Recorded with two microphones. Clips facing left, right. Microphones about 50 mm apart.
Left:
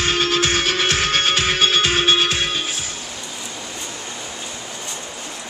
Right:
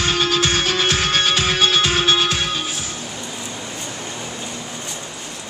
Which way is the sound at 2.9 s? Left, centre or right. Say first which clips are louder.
Right 2 dB; right.